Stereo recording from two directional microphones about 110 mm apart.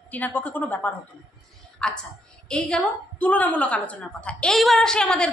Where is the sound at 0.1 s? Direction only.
15° left (ahead or behind).